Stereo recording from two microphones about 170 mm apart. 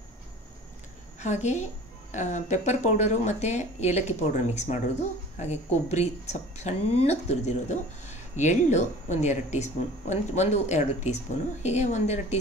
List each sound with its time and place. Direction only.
1.2 s speech: 45° left (ahead or behind)